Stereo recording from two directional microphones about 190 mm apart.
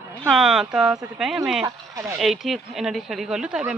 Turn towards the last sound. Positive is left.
turn(degrees=-5)  # may be behind; listen again after turning